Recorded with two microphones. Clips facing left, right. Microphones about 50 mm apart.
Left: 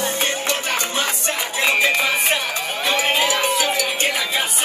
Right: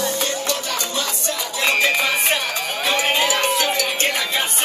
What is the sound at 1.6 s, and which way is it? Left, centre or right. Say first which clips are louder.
Music: even; centre.